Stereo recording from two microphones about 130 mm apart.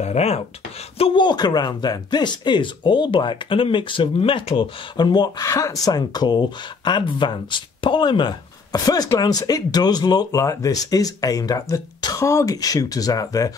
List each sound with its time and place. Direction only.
0.0 s speech: 55° left (ahead or behind)
0.9 s speech: 45° left (ahead or behind)